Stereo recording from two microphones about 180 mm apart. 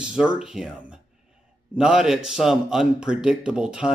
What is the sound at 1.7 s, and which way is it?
A man's voice, 5° right (ahead or behind).